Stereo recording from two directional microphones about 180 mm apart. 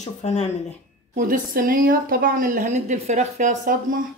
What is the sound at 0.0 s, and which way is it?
Speech, 40° left (ahead or behind).